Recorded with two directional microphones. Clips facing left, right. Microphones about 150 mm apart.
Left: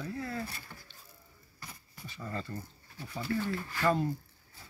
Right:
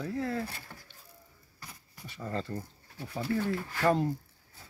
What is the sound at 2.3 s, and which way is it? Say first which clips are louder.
Speech: right 4 dB; 75° right (ahead or behind).